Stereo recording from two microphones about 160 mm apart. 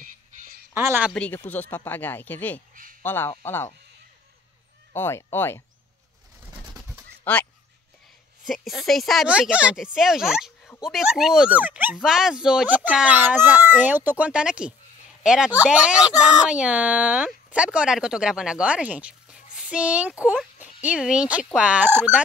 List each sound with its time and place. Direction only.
0.7 s speech: 15° right (ahead or behind)
1.1 s speech: 10° left (ahead or behind)
2.7 s speech: 55° right (ahead or behind)
3.0 s speech: 15° left (ahead or behind)
4.9 s speech: 15° left (ahead or behind)
7.3 s speech: 10° left (ahead or behind)
8.5 s speech: centre (ahead or behind)